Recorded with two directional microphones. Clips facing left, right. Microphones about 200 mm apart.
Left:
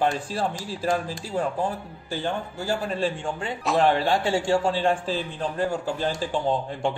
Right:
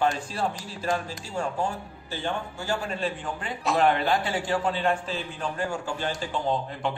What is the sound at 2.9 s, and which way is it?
Speech, 30° left (ahead or behind).